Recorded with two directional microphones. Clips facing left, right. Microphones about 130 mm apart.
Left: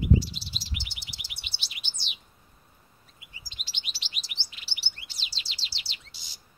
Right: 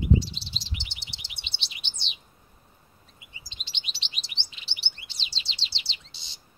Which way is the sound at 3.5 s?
25° right (ahead or behind).